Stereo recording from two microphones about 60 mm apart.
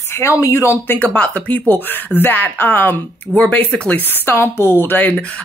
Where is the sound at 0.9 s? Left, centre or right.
Left.